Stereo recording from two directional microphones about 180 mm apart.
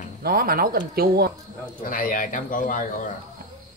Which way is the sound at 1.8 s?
50° left (ahead or behind).